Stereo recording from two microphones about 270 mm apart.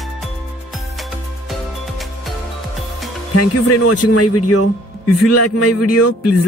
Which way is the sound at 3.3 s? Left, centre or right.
Left.